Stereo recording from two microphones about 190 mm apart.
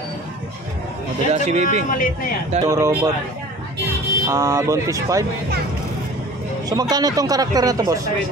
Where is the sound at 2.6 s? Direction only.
15° right (ahead or behind).